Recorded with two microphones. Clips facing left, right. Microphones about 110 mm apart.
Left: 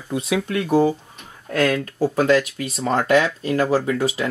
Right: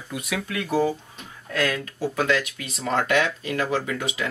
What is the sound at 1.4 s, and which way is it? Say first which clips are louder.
Speech: left 6 dB; 45° left (ahead or behind).